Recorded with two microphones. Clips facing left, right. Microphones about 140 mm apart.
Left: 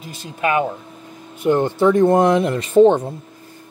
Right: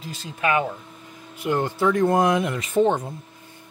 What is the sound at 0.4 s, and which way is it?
Speech, 20° left (ahead or behind).